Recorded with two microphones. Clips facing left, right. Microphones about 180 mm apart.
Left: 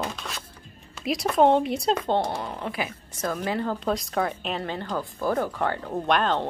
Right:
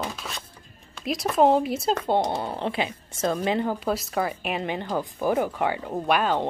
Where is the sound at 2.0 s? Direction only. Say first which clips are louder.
Right 2 dB; 15° right (ahead or behind).